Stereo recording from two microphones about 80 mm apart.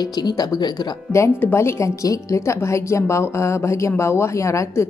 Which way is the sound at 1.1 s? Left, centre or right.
Left.